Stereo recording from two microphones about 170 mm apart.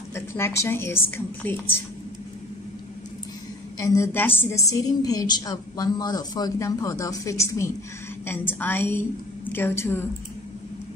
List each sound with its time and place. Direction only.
0.1 s a woman's voice: 15° left (ahead or behind)
3.7 s a woman's voice: 15° left (ahead or behind)